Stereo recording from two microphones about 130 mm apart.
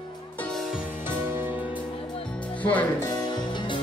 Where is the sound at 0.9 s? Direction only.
15° right (ahead or behind).